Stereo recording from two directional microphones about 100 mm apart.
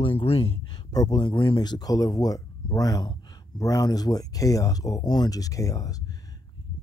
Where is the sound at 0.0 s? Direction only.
70° left (ahead or behind).